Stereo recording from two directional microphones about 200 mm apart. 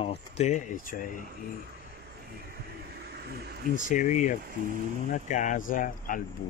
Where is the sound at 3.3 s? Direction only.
55° right (ahead or behind).